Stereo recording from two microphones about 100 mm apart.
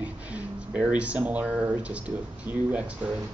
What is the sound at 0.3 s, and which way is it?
Speech, 15° right (ahead or behind).